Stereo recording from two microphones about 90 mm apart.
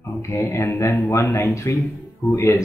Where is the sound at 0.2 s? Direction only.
30° left (ahead or behind).